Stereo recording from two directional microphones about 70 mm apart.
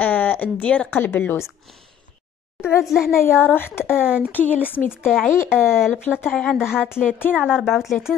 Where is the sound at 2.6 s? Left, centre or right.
Centre.